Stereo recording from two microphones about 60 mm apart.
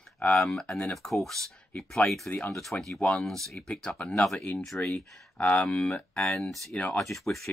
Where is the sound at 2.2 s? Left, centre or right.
Left.